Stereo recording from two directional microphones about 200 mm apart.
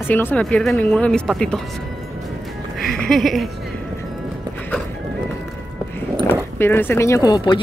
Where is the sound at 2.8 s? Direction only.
Centre (ahead or behind).